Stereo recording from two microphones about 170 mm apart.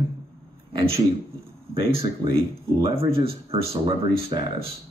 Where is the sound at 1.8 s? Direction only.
35° right (ahead or behind).